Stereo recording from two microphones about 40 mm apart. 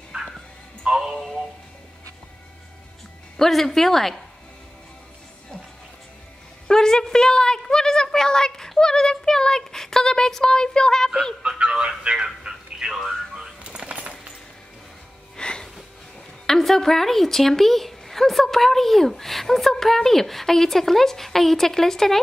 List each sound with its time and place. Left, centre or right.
0.1 s music: right
0.8 s music: centre
1.2 s music: centre
3.3 s speech: centre
6.7 s a woman's voice: centre
11.4 s speech: right
12.4 s a sound: centre
13.3 s a sound: right
15.3 s music: centre
16.4 s speech: centre